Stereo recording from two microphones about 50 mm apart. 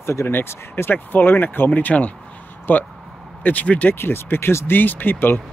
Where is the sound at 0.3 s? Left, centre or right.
Left.